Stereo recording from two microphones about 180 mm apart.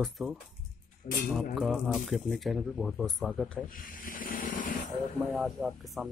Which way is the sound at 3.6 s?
50° left (ahead or behind).